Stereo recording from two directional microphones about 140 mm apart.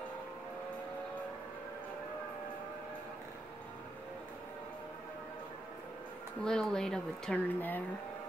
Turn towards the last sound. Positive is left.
turn(degrees=10)  # may be behind; listen again after turning